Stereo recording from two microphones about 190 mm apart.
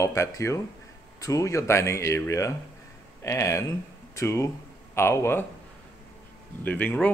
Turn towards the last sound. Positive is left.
turn(degrees=10)  # may be behind; listen again after turning